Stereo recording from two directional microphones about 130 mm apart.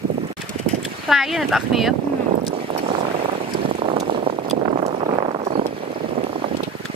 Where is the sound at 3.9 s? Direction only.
45° right (ahead or behind).